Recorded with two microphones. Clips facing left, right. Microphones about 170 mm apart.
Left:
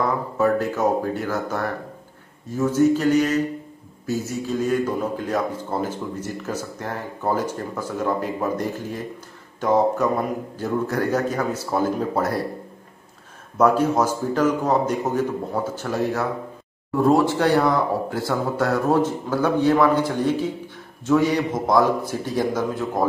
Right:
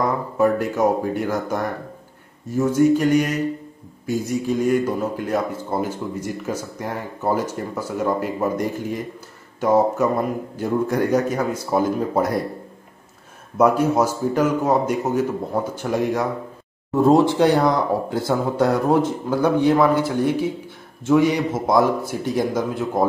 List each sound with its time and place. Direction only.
0.4 s a man's voice: 10° right (ahead or behind)
13.6 s a man's voice: 10° right (ahead or behind)